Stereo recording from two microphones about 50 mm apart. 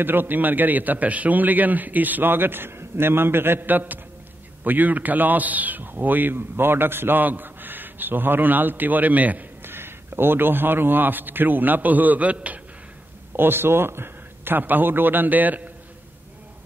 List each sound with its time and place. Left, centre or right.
0.0 s a man's voice: right
9.6 s a man's voice: right
13.4 s a man's voice: right